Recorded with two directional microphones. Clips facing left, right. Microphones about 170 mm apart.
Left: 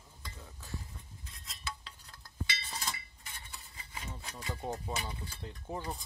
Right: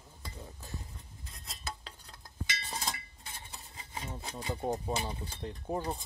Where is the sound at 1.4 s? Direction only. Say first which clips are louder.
Right 1 dB; 45° right (ahead or behind).